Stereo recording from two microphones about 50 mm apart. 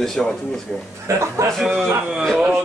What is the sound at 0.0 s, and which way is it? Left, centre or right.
Speech, centre.